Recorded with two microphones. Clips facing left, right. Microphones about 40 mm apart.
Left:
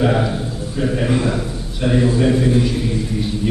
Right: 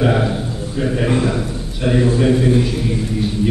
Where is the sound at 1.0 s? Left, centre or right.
Centre.